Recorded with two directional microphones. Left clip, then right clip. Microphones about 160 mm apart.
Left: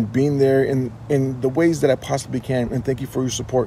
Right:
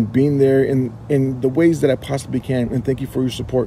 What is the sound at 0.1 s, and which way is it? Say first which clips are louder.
Speech: right 2 dB; 15° right (ahead or behind).